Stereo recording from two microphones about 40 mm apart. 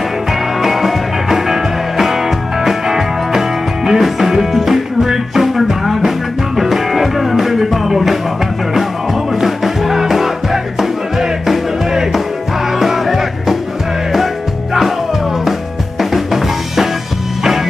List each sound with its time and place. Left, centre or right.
0.6 s music: centre
9.3 s music: centre
16.0 s drum kit: centre